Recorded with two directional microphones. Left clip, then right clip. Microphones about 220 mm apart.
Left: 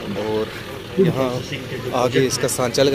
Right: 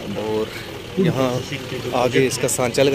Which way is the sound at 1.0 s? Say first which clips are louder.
Right 3 dB; 15° right (ahead or behind).